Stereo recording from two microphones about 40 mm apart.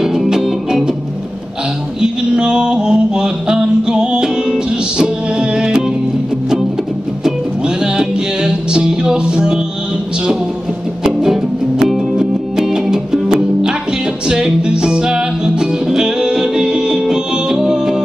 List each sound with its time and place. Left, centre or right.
0.0 s music: centre
2.0 s a sound: centre
7.2 s music: centre
12.2 s music: centre